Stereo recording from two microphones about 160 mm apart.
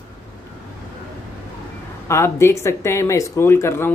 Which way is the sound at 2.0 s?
20° left (ahead or behind).